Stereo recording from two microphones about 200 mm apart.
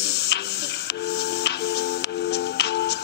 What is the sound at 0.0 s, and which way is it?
Tick-tock, 55° left (ahead or behind).